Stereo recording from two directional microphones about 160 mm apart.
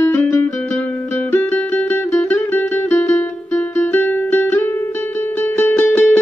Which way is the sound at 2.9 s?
10° left (ahead or behind).